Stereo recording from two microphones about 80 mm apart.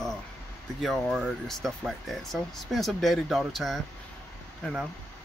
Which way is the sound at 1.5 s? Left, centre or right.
Centre.